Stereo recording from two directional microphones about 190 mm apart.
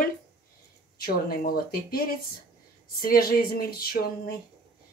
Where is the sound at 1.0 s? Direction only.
55° left (ahead or behind).